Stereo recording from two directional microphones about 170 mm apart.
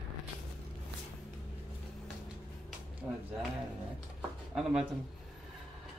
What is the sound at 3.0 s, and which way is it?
Speech, centre (ahead or behind).